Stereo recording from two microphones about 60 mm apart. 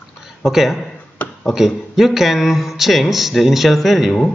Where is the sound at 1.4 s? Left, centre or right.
Centre.